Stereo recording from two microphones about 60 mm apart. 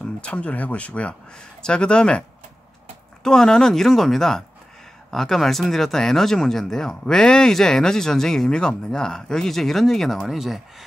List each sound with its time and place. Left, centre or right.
0.0 s speech: centre
3.3 s speech: centre